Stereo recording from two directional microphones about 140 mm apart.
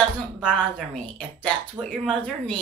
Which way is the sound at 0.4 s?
10° left (ahead or behind).